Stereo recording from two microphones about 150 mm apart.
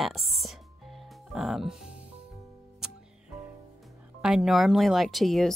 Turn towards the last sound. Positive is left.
turn(degrees=0)  # may be behind; listen again after turning